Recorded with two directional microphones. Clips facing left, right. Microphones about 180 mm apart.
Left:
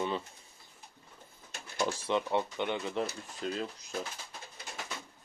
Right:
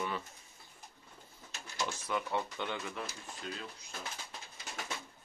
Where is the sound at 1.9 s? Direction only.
25° left (ahead or behind).